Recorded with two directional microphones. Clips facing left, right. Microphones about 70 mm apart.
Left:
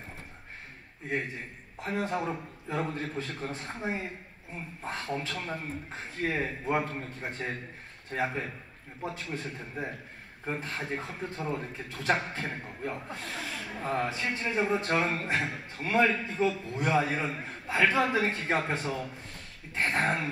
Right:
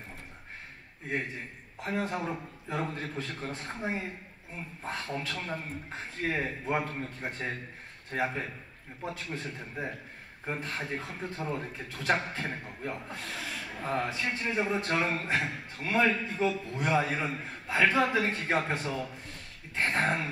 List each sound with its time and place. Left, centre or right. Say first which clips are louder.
1.3 s a man's voice: even; left
8.1 s a man's voice: even; left
19.2 s dog: even; left